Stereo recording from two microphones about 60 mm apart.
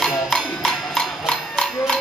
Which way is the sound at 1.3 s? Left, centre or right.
Centre.